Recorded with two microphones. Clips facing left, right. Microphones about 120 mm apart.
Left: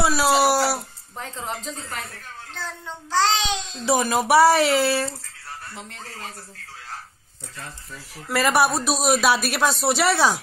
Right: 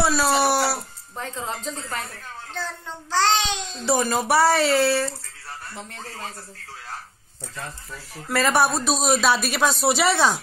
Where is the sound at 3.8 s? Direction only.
10° left (ahead or behind).